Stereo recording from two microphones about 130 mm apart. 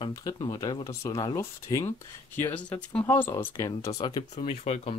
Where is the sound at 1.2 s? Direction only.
35° left (ahead or behind).